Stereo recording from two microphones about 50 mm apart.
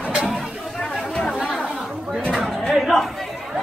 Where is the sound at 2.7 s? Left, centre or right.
Centre.